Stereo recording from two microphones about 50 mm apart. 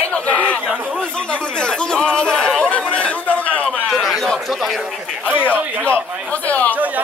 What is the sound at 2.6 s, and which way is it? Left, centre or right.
Chatter, left.